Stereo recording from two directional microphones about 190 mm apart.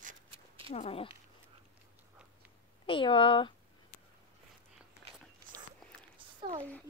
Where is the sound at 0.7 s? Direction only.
30° left (ahead or behind).